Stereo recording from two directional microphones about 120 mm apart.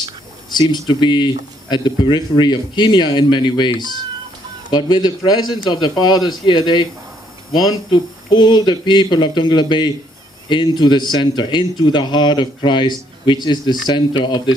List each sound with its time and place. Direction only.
0.5 s speech: 40° left (ahead or behind)